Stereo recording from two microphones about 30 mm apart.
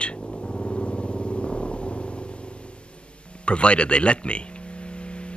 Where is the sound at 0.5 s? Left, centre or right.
Left.